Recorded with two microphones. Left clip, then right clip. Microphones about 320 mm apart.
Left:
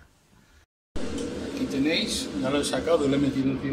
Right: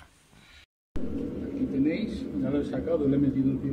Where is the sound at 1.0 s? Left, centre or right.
Left.